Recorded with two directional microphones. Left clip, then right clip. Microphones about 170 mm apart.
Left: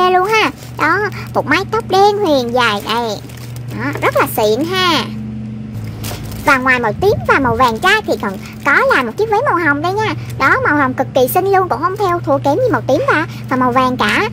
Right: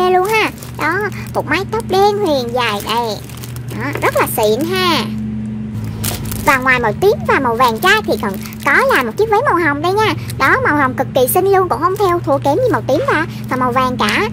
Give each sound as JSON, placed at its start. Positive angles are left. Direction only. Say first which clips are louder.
{"t": 0.0, "sound": "speech", "louder": "left 1 dB", "side_deg": 15}
{"t": 6.4, "sound": "speech", "louder": "even", "side_deg": 5}